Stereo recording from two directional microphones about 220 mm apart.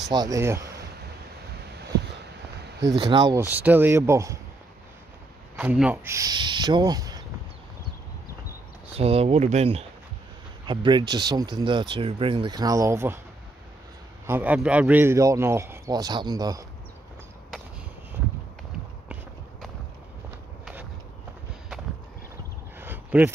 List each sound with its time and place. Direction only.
0.1 s speech: 15° right (ahead or behind)
2.8 s speech: 20° right (ahead or behind)
3.4 s a man's voice: 10° right (ahead or behind)
5.6 s a man's voice: 5° right (ahead or behind)
8.9 s speech: 25° right (ahead or behind); by 13.2 s 10° right (ahead or behind)
14.2 s a man's voice: 10° right (ahead or behind)
22.8 s a sound: 10° right (ahead or behind)